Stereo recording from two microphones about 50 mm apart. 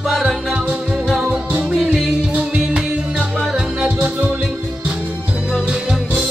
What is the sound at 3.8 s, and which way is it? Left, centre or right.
Music, right.